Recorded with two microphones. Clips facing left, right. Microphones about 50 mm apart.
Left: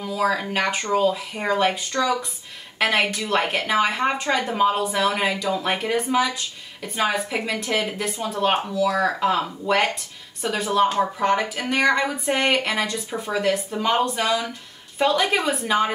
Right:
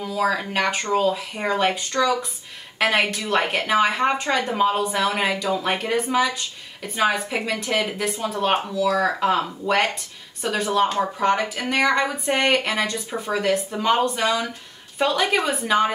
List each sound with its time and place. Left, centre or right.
0.0 s a woman's voice: centre